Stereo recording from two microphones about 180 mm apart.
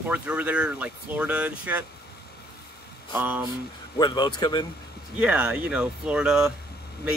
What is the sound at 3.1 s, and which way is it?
Speech, 10° right (ahead or behind).